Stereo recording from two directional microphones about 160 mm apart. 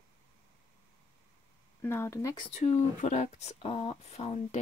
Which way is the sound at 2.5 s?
45° left (ahead or behind).